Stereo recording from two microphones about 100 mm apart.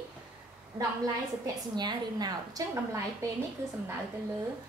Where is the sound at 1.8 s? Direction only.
45° right (ahead or behind).